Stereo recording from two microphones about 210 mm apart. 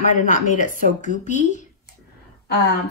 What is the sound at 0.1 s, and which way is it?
Speech, 40° left (ahead or behind).